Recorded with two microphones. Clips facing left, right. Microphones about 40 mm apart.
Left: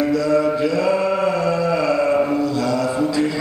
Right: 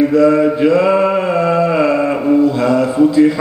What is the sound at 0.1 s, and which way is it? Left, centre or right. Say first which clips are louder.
Mantra: right 6 dB; right.